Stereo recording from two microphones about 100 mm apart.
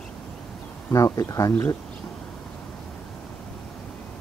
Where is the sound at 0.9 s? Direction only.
35° left (ahead or behind).